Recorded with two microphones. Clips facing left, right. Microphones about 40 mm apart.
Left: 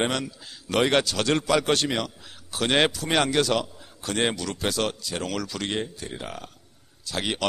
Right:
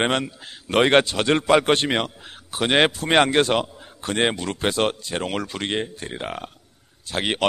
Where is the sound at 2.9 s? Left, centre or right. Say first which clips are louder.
Right 5 dB; right.